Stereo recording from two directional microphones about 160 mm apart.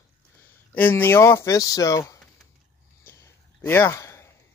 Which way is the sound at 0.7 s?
10° left (ahead or behind).